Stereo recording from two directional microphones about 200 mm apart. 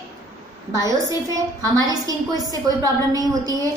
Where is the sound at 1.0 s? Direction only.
15° right (ahead or behind).